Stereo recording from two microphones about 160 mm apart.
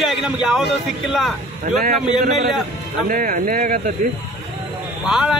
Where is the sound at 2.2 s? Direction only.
50° right (ahead or behind).